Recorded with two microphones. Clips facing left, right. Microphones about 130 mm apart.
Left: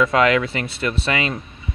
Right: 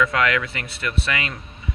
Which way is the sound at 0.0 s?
25° left (ahead or behind).